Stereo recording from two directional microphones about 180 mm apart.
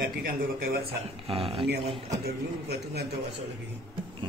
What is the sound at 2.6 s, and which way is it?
Speech, 65° right (ahead or behind).